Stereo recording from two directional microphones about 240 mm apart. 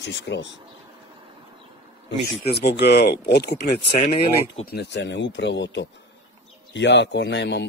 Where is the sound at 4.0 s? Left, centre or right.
Left.